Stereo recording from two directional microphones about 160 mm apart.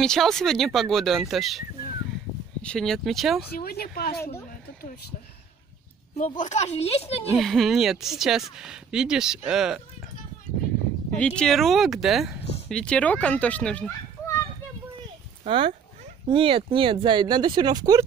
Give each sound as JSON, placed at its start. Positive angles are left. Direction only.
{"t": 0.0, "sound": "speech", "side_deg": 5}
{"t": 2.6, "sound": "speech", "side_deg": 5}
{"t": 3.5, "sound": "speech", "side_deg": 75}
{"t": 6.1, "sound": "speech", "side_deg": 50}
{"t": 7.3, "sound": "speech", "side_deg": 0}
{"t": 11.1, "sound": "speech", "side_deg": 10}
{"t": 15.4, "sound": "speech", "side_deg": -35}